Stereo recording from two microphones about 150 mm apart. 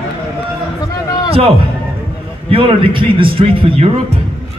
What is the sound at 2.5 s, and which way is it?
A man's voice, 35° right (ahead or behind).